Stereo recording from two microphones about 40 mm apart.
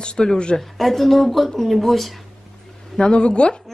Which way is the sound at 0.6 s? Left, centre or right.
Centre.